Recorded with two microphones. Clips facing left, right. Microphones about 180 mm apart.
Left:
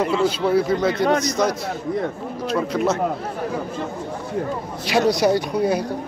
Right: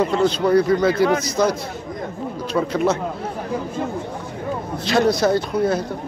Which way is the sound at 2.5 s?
Centre (ahead or behind).